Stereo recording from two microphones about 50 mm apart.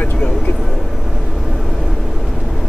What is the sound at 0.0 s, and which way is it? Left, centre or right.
Vehicle, left.